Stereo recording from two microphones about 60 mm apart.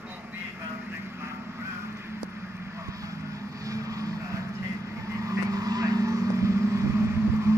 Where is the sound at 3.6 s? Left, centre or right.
Right.